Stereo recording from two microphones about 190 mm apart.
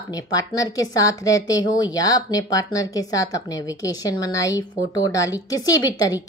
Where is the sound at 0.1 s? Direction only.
20° left (ahead or behind).